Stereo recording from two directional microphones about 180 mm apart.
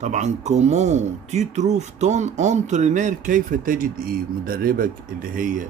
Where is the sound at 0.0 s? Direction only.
40° right (ahead or behind).